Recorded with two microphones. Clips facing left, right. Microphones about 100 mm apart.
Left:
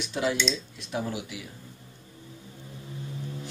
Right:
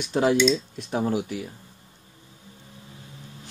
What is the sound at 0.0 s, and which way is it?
Speech, 45° right (ahead or behind).